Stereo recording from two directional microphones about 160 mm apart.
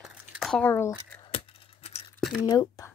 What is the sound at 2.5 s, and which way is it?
Speech, 25° left (ahead or behind).